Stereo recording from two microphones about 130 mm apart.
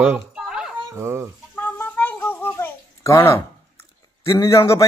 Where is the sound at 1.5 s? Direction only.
10° left (ahead or behind).